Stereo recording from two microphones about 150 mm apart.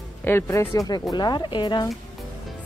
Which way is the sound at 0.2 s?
15° left (ahead or behind).